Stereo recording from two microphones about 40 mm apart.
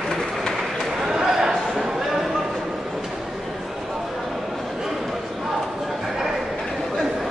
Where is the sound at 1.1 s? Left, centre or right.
Centre.